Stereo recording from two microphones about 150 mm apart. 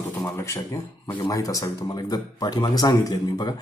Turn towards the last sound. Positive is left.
turn(degrees=25)  # may be behind; listen again after turning